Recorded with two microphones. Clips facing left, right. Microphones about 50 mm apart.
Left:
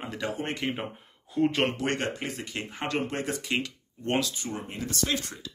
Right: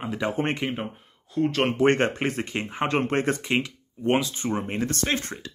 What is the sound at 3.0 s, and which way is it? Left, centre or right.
Speech, right.